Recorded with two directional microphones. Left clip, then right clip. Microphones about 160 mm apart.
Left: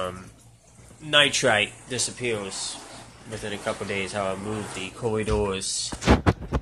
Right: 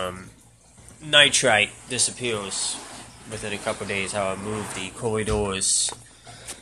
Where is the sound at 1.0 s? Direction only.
5° left (ahead or behind).